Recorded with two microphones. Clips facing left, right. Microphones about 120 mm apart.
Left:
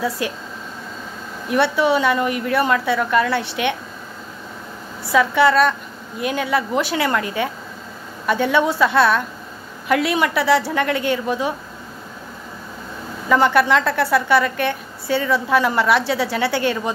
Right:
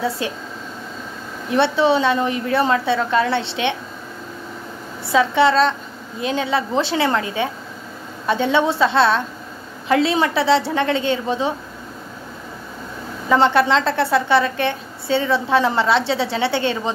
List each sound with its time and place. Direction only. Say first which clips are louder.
0.2 s a woman's voice: left 1 dB; 25° right (ahead or behind)
1.5 s a woman's voice: right 1 dB; 25° right (ahead or behind)
5.1 s a woman's voice: even; 25° right (ahead or behind)
13.3 s a woman's voice: even; 25° right (ahead or behind)